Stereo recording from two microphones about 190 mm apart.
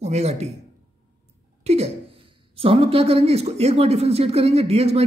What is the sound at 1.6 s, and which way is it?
A woman's voice, 35° right (ahead or behind).